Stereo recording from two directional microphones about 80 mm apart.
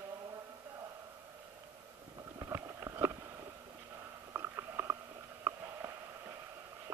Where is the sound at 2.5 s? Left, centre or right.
Right.